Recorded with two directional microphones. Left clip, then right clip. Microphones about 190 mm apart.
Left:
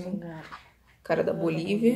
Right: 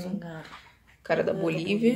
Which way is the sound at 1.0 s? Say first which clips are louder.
Even; 5° left (ahead or behind).